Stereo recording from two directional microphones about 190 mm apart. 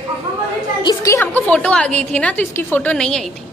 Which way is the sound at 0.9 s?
15° left (ahead or behind).